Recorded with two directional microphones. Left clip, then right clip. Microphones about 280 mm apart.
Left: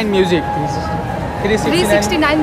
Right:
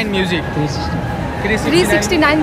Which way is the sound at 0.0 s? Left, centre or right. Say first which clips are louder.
Left 3 dB; left.